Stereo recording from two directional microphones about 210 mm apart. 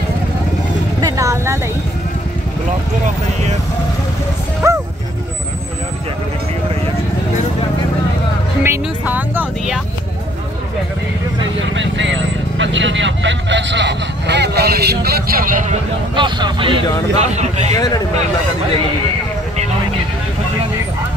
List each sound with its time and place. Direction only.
1.0 s vehicle: 15° right (ahead or behind)
4.6 s bow-wow: 15° right (ahead or behind)
8.6 s speech: 10° right (ahead or behind)
11.7 s speech: 60° right (ahead or behind); by 15.8 s 40° right (ahead or behind)
16.2 s speech: 20° right (ahead or behind)
17.7 s speech: 20° left (ahead or behind)